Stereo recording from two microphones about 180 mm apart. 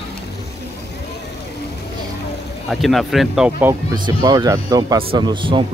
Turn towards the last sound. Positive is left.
turn(degrees=-25)  # may be behind; listen again after turning